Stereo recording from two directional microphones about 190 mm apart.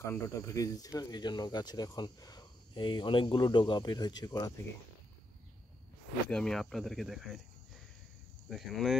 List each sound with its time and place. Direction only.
0.0 s speech: 15° left (ahead or behind)
6.2 s speech: 5° left (ahead or behind)
8.5 s speech: centre (ahead or behind)